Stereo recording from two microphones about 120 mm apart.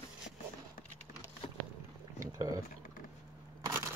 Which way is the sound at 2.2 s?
30° right (ahead or behind).